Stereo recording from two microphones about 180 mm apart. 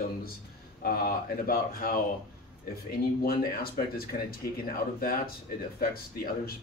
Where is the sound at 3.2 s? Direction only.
55° left (ahead or behind).